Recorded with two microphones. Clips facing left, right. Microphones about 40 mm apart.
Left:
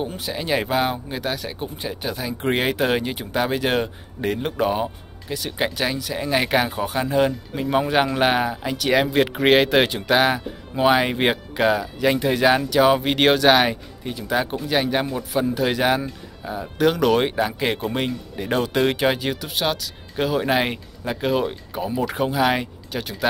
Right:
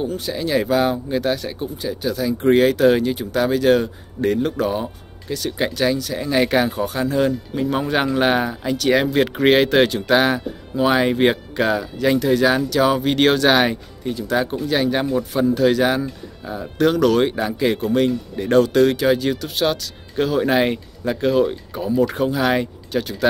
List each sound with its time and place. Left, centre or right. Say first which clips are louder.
0.0 s speech: right 4 dB; centre
1.1 s speech: right 6 dB; centre
1.6 s speech: right 4 dB; left; by 12.2 s centre
12.2 s speech: right 1 dB; centre
18.3 s speech: right 6 dB; centre; by 19.2 s left
19.2 s speech: right 4 dB; centre